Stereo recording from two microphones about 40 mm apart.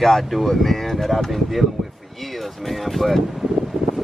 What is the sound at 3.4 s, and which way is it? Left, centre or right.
Wind, centre.